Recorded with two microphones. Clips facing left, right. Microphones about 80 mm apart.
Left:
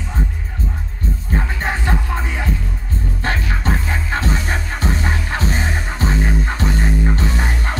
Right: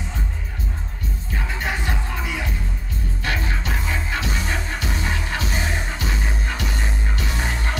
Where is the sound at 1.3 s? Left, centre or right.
Left.